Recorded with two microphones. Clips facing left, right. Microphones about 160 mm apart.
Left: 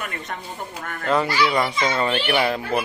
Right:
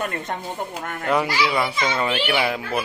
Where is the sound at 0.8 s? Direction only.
15° right (ahead or behind).